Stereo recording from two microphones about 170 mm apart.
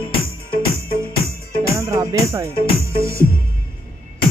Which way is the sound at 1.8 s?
15° right (ahead or behind).